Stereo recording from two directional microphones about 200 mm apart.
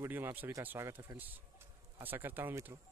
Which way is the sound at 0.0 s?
10° right (ahead or behind).